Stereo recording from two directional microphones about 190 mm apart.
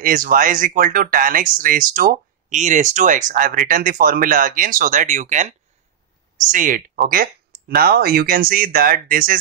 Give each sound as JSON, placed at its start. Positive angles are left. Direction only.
{"t": 0.0, "sound": "speech", "side_deg": -45}